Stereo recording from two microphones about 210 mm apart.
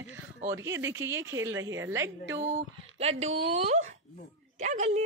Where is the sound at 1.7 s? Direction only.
15° right (ahead or behind).